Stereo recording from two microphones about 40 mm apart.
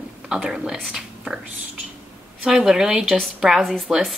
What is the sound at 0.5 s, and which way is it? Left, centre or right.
Speech, centre.